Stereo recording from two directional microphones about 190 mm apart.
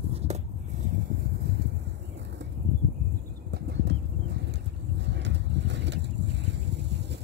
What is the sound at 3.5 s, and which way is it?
Horse, 60° right (ahead or behind).